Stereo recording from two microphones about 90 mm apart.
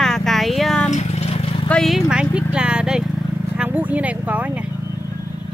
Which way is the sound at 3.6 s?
15° right (ahead or behind).